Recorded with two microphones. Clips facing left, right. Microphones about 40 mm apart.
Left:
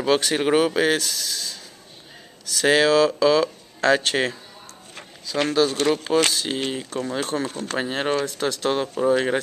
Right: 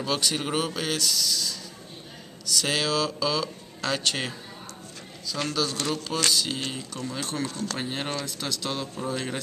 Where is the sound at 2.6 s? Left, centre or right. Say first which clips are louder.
Left 11 dB; left.